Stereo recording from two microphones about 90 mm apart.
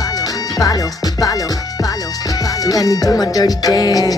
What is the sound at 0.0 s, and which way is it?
Music, 45° left (ahead or behind).